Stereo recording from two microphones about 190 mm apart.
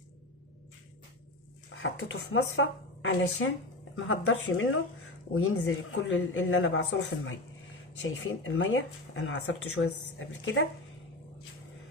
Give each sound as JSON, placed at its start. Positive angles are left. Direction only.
{"t": 1.7, "sound": "speech", "side_deg": 80}